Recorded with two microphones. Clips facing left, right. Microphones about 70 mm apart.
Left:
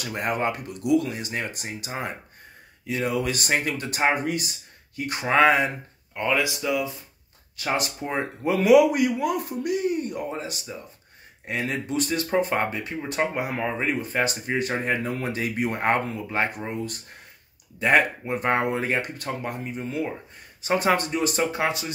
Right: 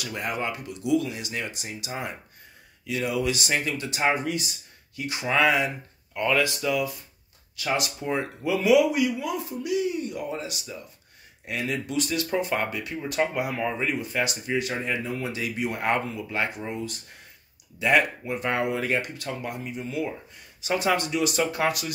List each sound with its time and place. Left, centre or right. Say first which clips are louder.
0.0 s a man's voice: left 4 dB; left
6.1 s speech: even; centre
7.5 s speech: left 1 dB; left
8.5 s a man's voice: left 3 dB; left
21.5 s speech: even; left